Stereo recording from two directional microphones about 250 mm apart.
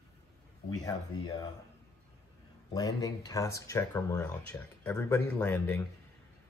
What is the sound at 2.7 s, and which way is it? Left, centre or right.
Speech, centre.